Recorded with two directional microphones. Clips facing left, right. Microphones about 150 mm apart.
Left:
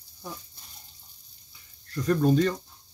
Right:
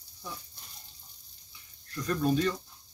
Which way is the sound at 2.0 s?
45° left (ahead or behind).